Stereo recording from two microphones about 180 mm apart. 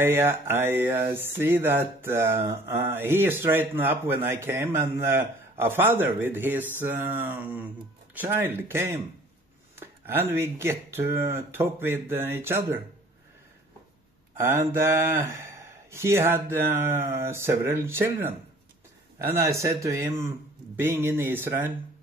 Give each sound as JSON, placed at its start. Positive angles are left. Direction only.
{"t": 0.0, "sound": "music", "side_deg": -15}
{"t": 14.3, "sound": "music", "side_deg": -15}
{"t": 19.1, "sound": "speech", "side_deg": -15}
{"t": 19.6, "sound": "music", "side_deg": -15}